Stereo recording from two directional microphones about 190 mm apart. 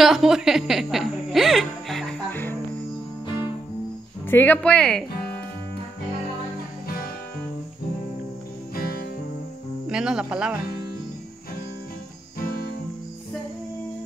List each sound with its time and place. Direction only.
0.0 s a sound: centre (ahead or behind)
4.3 s speech: 10° left (ahead or behind)
8.7 s music: 55° left (ahead or behind)
9.8 s speech: 5° right (ahead or behind)